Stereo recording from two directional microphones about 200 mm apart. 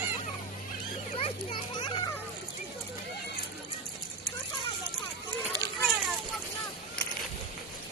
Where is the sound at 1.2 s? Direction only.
25° left (ahead or behind).